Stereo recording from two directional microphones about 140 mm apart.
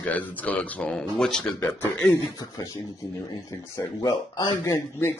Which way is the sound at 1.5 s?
15° left (ahead or behind).